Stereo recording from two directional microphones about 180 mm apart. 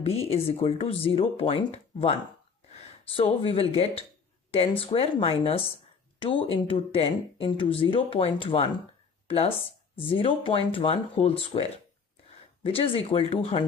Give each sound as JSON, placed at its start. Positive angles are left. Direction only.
{"t": 0.0, "sound": "speech", "side_deg": 35}
{"t": 3.2, "sound": "speech", "side_deg": 30}
{"t": 9.9, "sound": "speech", "side_deg": 30}
{"t": 12.6, "sound": "speech", "side_deg": 30}